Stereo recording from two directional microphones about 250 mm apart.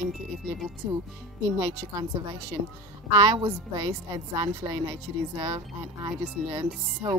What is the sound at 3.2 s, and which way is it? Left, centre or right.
A woman's voice, centre.